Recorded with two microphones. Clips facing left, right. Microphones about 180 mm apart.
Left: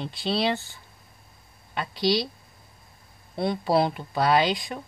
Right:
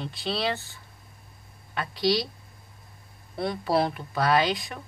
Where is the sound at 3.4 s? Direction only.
25° left (ahead or behind).